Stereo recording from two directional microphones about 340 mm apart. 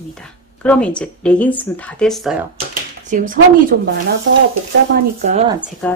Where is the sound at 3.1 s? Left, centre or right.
Right.